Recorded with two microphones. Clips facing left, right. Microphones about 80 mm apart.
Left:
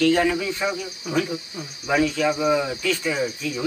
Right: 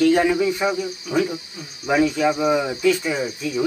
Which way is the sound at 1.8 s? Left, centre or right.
Centre.